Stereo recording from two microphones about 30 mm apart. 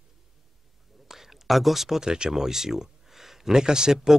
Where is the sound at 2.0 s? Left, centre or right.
Right.